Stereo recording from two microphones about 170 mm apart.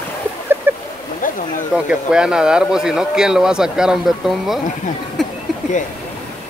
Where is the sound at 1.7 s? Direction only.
5° right (ahead or behind).